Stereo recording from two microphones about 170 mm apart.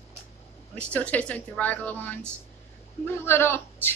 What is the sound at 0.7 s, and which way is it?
A woman's voice, 5° left (ahead or behind).